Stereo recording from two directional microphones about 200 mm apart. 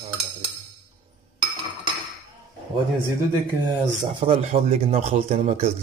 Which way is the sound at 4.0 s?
25° right (ahead or behind).